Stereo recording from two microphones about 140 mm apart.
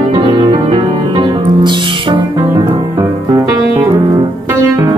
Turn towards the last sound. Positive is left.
turn(degrees=-15)  # may be behind; listen again after turning